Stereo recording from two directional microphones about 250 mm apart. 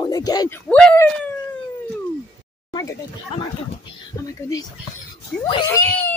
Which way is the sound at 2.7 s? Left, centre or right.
Centre.